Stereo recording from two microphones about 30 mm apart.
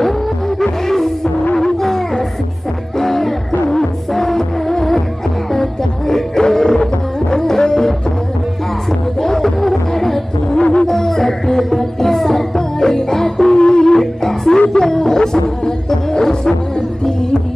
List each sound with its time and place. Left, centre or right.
0.6 s music: centre
1.8 s a sound: centre
3.0 s music: centre
9.2 s a sound: centre
10.5 s music: left
10.9 s music: centre
13.6 s music: left
13.9 s music: centre